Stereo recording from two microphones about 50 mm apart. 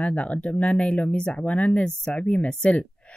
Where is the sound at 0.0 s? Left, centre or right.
Left.